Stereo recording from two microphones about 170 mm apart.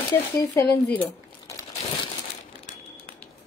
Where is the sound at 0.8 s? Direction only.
10° left (ahead or behind).